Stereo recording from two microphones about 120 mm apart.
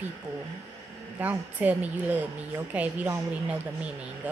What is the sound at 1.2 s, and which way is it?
Speech, 15° right (ahead or behind).